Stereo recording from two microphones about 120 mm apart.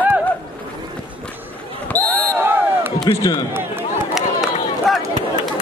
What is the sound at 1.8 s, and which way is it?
Basketball bounce, 15° left (ahead or behind).